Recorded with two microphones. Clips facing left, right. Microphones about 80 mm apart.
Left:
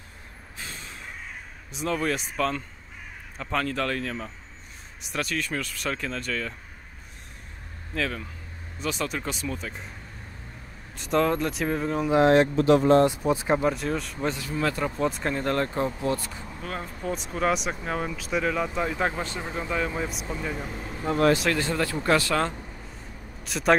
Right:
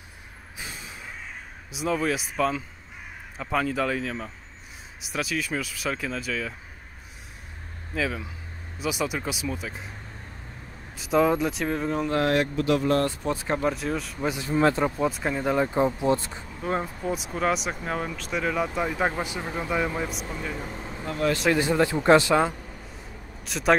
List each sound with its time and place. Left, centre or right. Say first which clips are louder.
0.6 s a sound: right 1 dB; centre
1.7 s speech: right 1 dB; centre
7.9 s speech: right 1 dB; centre
11.0 s speech: right 2 dB; centre
12.1 s speech: left 7 dB; left
13.6 s speech: left 1 dB; centre
14.4 s speech: right 9 dB; right
14.9 s speech: right 1 dB; centre; by 16.9 s right
17.0 s speech: even; centre
20.0 s speech: even; centre
21.5 s speech: right 4 dB; centre
23.4 s speech: even; centre